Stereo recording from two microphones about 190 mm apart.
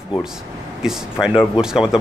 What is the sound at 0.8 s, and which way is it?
Speech, 5° right (ahead or behind).